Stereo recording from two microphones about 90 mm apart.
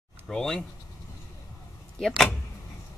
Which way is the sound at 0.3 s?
5° left (ahead or behind).